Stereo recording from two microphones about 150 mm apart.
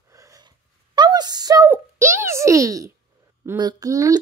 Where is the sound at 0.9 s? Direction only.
30° right (ahead or behind).